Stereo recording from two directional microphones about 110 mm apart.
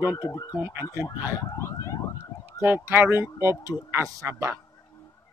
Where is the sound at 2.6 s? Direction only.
20° right (ahead or behind).